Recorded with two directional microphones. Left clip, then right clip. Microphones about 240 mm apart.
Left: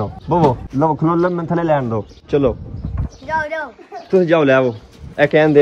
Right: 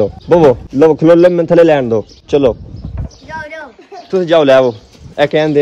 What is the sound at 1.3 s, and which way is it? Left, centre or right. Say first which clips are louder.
Speech: right 9 dB; right.